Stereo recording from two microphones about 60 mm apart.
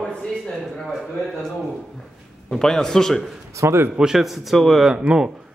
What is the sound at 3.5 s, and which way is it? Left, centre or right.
Speech, right.